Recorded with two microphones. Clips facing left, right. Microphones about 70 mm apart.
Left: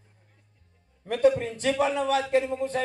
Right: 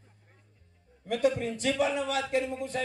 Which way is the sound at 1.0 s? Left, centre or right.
Left.